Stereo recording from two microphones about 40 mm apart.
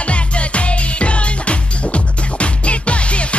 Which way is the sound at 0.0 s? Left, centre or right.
Left.